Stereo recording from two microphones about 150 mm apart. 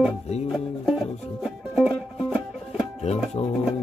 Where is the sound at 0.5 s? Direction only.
5° right (ahead or behind).